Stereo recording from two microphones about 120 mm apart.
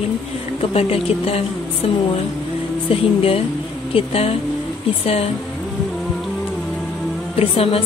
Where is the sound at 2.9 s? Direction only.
55° left (ahead or behind).